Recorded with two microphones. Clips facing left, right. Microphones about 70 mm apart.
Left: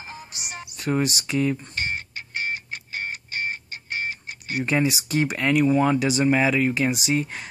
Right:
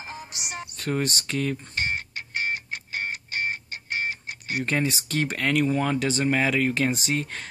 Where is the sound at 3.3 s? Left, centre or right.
Right.